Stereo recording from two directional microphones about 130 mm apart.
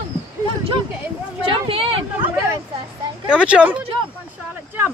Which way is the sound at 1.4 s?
45° right (ahead or behind).